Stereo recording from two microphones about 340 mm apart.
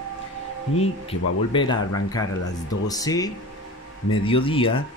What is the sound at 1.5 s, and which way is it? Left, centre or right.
Speech, centre.